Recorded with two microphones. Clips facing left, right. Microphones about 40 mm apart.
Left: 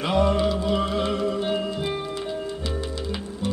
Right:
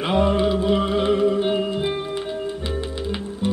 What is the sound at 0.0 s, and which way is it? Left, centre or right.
Music, right.